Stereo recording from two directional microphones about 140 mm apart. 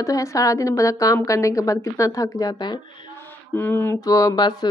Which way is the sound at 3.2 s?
15° left (ahead or behind).